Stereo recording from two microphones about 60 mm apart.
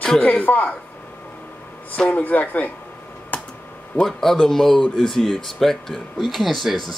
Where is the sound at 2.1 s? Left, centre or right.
Left.